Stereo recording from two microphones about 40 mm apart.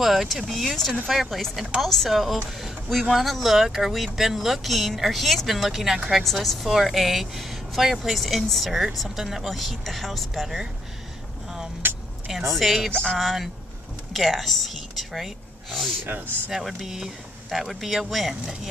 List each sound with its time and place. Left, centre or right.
0.0 s speech: centre
6.2 s speech: centre
11.8 s vehicle: right
12.3 s a woman's voice: centre
16.1 s speech: right
16.5 s speech: centre